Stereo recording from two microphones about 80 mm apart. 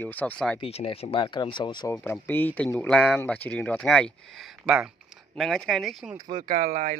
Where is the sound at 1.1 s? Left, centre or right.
Left.